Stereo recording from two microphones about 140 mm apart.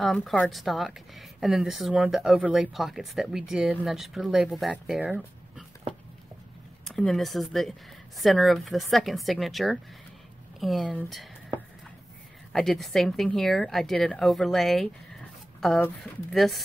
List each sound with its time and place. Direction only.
0.0 s speech: centre (ahead or behind)
6.8 s speech: 5° left (ahead or behind)
12.5 s speech: centre (ahead or behind)